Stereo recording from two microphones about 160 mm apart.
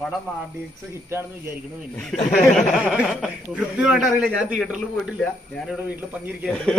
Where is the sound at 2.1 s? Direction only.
50° left (ahead or behind).